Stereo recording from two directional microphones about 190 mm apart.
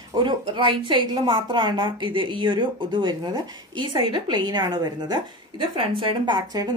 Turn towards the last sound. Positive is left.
turn(degrees=-25)  # may be behind; listen again after turning